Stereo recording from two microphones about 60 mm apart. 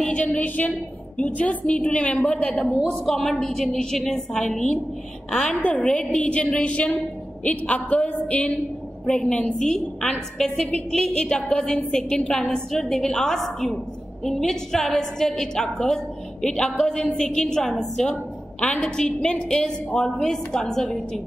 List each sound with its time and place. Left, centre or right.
0.0 s a woman's voice: centre
3.1 s a woman's voice: centre